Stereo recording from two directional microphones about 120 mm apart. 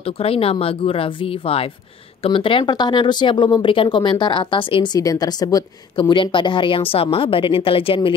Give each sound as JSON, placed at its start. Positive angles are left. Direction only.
{"t": 0.0, "sound": "speech", "side_deg": 55}
{"t": 4.9, "sound": "speech", "side_deg": 30}